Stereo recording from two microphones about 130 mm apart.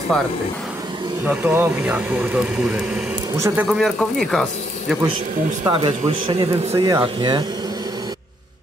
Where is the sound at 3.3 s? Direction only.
25° right (ahead or behind).